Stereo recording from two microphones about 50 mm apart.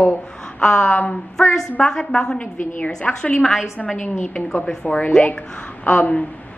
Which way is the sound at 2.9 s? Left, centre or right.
Centre.